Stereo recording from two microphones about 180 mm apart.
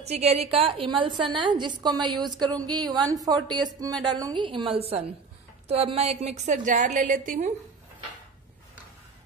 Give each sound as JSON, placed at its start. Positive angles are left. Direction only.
{"t": 0.0, "sound": "a woman's voice", "side_deg": -35}